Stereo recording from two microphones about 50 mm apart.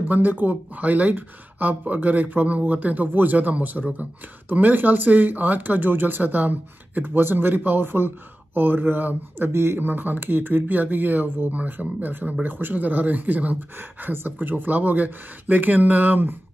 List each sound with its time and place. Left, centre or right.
0.1 s speech: right
9.5 s speech: right
9.8 s speech: right